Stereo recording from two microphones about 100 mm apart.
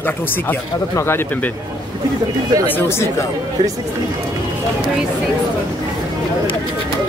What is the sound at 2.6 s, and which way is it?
Speech, 25° left (ahead or behind).